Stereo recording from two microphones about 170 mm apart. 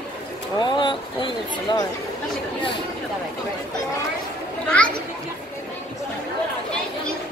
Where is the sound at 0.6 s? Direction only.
25° left (ahead or behind).